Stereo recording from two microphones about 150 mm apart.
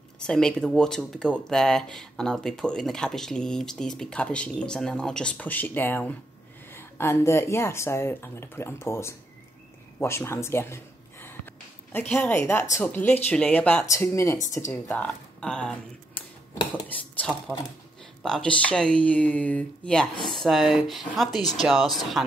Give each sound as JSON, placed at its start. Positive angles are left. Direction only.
{"t": 0.2, "sound": "speech", "side_deg": 5}
{"t": 9.9, "sound": "a sound", "side_deg": 15}
{"t": 12.8, "sound": "speech", "side_deg": 10}